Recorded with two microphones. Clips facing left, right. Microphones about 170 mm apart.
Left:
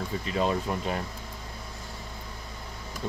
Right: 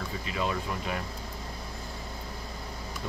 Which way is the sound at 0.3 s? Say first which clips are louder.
Left 4 dB; 35° left (ahead or behind).